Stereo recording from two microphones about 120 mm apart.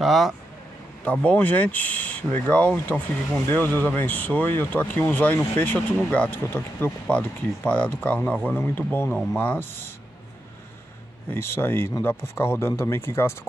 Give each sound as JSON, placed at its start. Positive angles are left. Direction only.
{"t": 0.0, "sound": "speech", "side_deg": 0}
{"t": 1.2, "sound": "speech", "side_deg": 10}
{"t": 11.2, "sound": "speech", "side_deg": 20}